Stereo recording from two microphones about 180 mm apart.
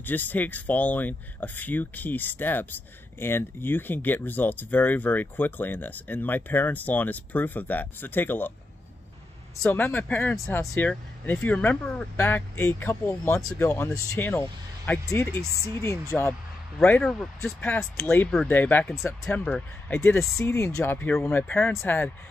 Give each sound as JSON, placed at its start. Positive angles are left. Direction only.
{"t": 0.0, "sound": "speech", "side_deg": 10}
{"t": 9.6, "sound": "speech", "side_deg": 10}
{"t": 16.8, "sound": "speech", "side_deg": 5}